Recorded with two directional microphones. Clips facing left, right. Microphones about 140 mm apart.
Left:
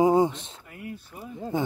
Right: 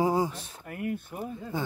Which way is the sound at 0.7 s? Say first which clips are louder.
Right 7 dB; 55° right (ahead or behind).